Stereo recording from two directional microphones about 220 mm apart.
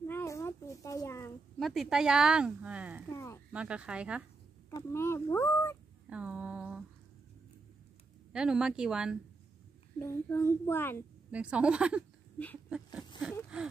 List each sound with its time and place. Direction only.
0.0 s a sound: 10° left (ahead or behind)
1.6 s speech: centre (ahead or behind)
4.6 s speech: 10° left (ahead or behind)
6.0 s a sound: 5° right (ahead or behind)
8.3 s speech: 5° right (ahead or behind)
9.9 s speech: 10° left (ahead or behind)
11.3 s speech: 5° right (ahead or behind)